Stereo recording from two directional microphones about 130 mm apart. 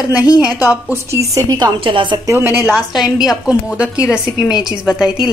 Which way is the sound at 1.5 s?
40° right (ahead or behind).